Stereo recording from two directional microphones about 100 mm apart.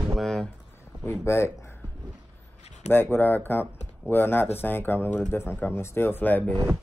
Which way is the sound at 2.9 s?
20° left (ahead or behind).